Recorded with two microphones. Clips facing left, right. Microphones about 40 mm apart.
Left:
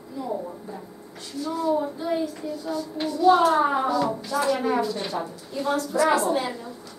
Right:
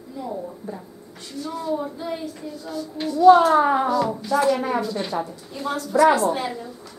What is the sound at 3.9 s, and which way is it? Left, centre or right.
A woman's voice, centre.